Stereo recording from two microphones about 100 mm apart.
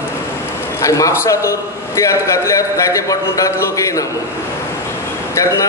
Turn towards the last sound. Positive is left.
turn(degrees=30)  # may be behind; listen again after turning